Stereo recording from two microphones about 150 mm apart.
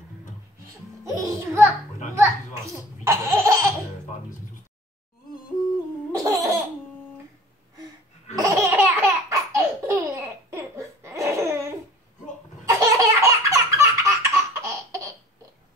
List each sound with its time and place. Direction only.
1.0 s a child's voice: 20° right (ahead or behind)
2.1 s laughter: 20° right (ahead or behind)
6.1 s laughter: 25° right (ahead or behind)
8.4 s laughter: 20° right (ahead or behind)